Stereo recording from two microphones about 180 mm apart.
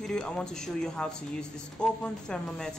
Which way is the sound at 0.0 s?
5° left (ahead or behind).